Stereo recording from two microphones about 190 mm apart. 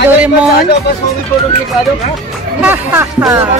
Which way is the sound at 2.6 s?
10° right (ahead or behind).